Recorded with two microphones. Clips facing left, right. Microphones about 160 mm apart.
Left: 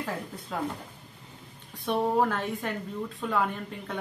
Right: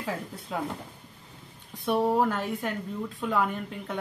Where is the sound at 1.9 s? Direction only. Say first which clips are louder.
Right 1 dB; 5° right (ahead or behind).